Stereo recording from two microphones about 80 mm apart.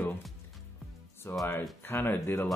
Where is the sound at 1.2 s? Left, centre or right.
Left.